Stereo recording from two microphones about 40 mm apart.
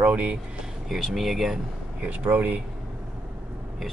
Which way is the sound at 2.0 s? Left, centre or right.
Right.